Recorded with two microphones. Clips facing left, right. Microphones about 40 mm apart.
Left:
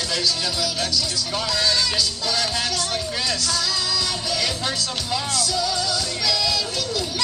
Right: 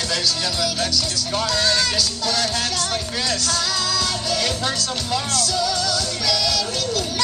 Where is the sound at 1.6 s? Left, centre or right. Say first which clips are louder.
Even; centre.